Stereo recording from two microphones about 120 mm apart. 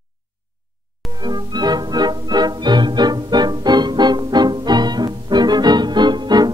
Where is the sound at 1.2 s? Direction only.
35° right (ahead or behind).